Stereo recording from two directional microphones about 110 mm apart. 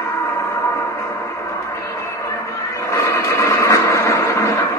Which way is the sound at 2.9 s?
25° left (ahead or behind).